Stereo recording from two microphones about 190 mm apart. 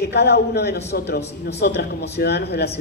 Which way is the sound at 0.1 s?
60° left (ahead or behind).